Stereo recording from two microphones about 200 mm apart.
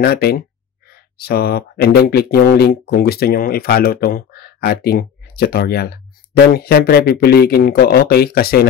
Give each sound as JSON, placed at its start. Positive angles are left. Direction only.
{"t": 0.0, "sound": "speech", "side_deg": 50}